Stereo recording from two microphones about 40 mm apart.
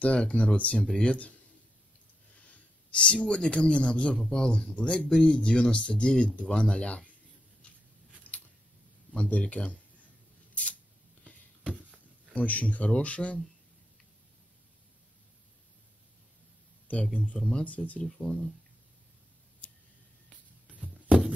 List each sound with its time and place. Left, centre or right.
0.0 s speech: left
2.9 s speech: left
4.7 s speech: left
8.3 s biting: left
9.1 s speech: left
10.5 s scissors: left
11.2 s a sound: left
12.4 s speech: left
16.8 s speech: left
18.1 s speech: centre